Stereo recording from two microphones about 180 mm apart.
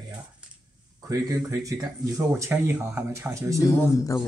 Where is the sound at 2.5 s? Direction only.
10° right (ahead or behind).